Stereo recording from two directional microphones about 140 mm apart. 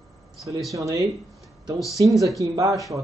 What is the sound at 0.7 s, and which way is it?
Speech, 25° right (ahead or behind).